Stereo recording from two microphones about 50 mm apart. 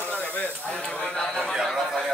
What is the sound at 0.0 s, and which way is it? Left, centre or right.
Snake, left.